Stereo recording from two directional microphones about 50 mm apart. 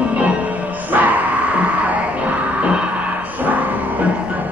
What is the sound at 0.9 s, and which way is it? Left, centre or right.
Music, right.